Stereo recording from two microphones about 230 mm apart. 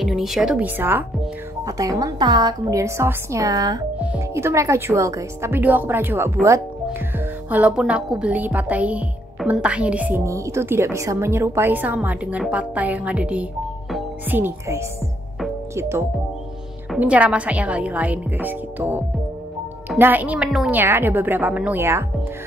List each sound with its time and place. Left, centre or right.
0.0 s a woman's voice: centre